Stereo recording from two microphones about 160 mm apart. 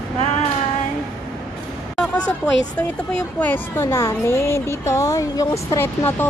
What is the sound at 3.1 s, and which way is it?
Speech, 10° left (ahead or behind).